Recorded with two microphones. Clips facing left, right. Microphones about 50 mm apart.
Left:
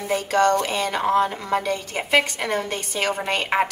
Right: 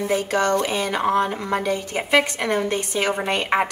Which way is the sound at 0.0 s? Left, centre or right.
Centre.